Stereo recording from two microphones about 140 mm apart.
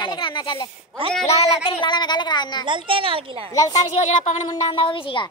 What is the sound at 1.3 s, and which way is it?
Speech, 50° left (ahead or behind).